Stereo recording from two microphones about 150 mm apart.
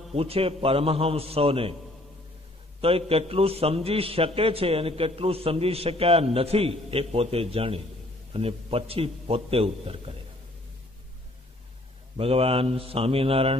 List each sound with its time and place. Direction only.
0.1 s a man's voice: 40° right (ahead or behind)
2.8 s a man's voice: 40° right (ahead or behind)
12.2 s a man's voice: 40° right (ahead or behind)